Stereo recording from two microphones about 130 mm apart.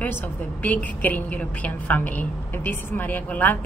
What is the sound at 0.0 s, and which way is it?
A woman's voice, 15° left (ahead or behind).